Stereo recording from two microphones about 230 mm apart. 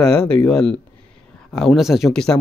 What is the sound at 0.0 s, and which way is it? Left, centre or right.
Speech, centre.